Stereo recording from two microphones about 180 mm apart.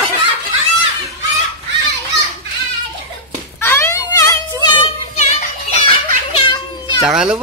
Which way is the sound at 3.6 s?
15° left (ahead or behind).